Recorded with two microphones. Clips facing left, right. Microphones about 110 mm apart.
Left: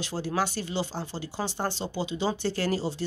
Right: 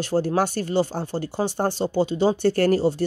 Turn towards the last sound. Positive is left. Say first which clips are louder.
# right 9 dB
turn(degrees=-50)  # may be behind; listen again after turning